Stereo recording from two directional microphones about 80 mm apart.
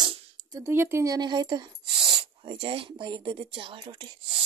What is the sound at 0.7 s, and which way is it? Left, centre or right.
Speech, right.